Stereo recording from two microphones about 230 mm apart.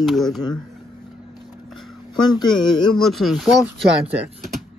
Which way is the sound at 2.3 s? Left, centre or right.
Centre.